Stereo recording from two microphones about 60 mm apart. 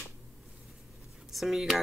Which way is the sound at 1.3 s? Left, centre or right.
Centre.